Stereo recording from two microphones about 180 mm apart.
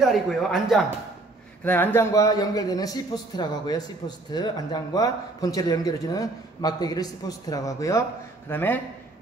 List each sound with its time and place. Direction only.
0.0 s a man's voice: centre (ahead or behind)